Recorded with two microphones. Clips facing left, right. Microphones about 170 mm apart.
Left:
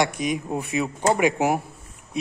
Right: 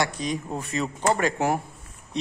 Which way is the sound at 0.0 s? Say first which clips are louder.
Left 3 dB; 10° left (ahead or behind).